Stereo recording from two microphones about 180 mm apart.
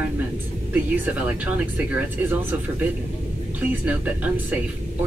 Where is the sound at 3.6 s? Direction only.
10° right (ahead or behind).